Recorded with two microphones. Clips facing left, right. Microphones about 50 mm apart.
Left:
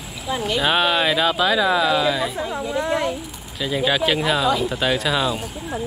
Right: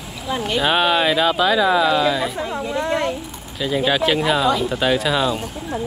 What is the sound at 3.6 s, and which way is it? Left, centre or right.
Speech, centre.